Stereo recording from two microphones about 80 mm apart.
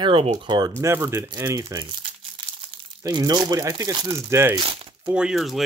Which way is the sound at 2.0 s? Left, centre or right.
Right.